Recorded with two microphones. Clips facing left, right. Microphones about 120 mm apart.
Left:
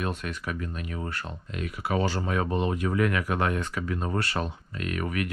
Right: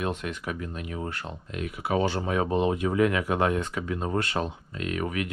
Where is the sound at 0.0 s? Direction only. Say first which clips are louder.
Right 1 dB; 20° right (ahead or behind).